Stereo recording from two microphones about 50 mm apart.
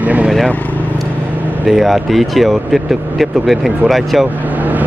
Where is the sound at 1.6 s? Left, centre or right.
Centre.